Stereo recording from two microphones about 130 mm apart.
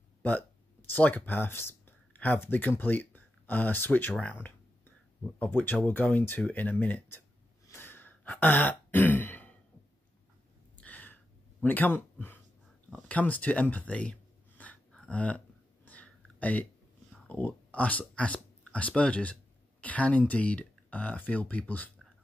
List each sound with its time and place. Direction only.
0.8 s speech: 15° left (ahead or behind)
10.8 s gasp: 10° left (ahead or behind)
11.6 s speech: 15° left (ahead or behind)
14.6 s a sound: 10° left (ahead or behind)
17.3 s speech: 10° left (ahead or behind)